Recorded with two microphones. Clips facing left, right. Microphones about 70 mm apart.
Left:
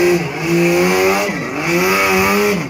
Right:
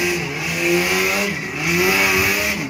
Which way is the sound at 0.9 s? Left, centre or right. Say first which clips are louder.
Left 6 dB; left.